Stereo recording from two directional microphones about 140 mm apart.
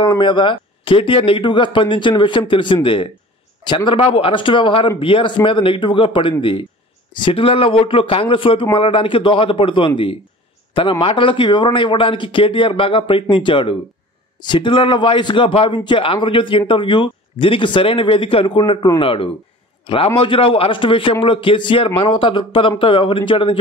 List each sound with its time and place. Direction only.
0.0 s a man's voice: 35° left (ahead or behind)